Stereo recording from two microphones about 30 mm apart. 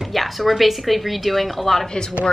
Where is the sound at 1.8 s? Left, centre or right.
Left.